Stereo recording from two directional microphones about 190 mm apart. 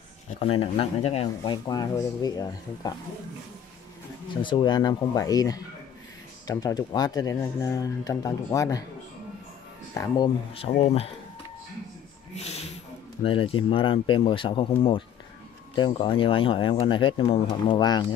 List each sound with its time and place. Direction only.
0.3 s speech: 30° left (ahead or behind)
4.4 s speech: 25° left (ahead or behind)
9.9 s speech: 20° left (ahead or behind)
12.4 s music: 35° left (ahead or behind)
13.2 s speech: 30° left (ahead or behind)